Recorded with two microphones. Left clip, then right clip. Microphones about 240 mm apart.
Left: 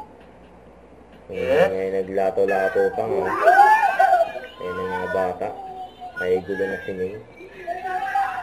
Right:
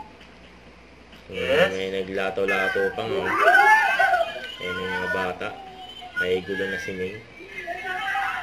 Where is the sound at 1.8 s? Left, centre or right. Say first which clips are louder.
Left 4 dB; right.